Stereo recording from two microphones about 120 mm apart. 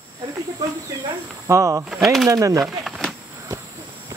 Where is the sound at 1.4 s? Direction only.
25° right (ahead or behind).